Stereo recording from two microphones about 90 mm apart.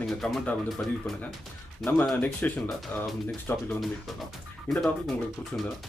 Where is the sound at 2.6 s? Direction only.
Centre (ahead or behind).